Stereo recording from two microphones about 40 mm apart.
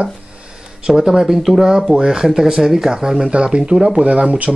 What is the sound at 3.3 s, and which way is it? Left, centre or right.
Speech, right.